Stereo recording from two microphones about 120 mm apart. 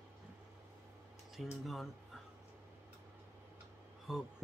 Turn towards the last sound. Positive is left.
turn(degrees=-5)  # may be behind; listen again after turning